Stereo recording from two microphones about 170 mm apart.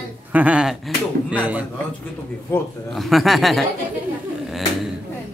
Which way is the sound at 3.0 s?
Centre (ahead or behind).